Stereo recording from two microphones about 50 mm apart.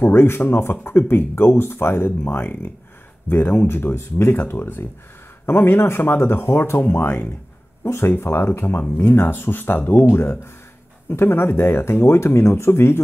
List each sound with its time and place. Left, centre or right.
0.0 s speech: left
11.1 s speech: left